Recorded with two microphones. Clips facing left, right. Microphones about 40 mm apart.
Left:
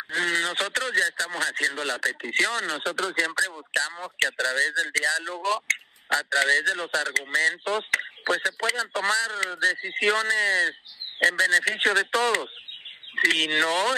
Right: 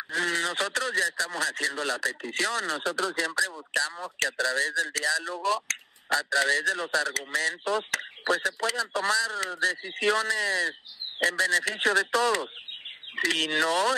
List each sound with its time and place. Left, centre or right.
0.1 s a man's voice: left